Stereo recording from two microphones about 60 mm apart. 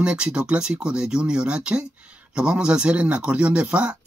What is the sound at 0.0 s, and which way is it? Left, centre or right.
Speech, centre.